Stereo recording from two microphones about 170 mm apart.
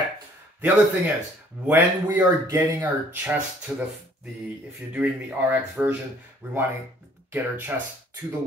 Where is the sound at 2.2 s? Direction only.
15° right (ahead or behind).